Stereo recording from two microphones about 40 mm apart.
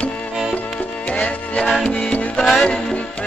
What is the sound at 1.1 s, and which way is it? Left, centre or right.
Music, left.